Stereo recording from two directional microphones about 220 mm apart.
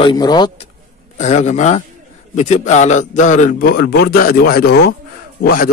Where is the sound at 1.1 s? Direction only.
30° left (ahead or behind).